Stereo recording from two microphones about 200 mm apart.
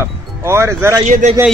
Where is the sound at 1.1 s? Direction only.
40° right (ahead or behind).